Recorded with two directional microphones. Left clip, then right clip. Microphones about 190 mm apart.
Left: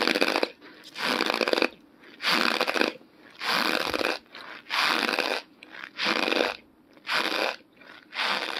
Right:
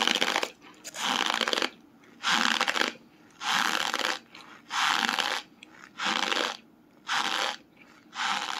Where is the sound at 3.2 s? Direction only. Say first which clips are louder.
Left 1 dB; 10° left (ahead or behind).